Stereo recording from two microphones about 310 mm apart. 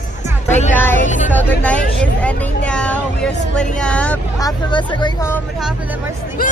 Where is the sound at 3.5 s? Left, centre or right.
Centre.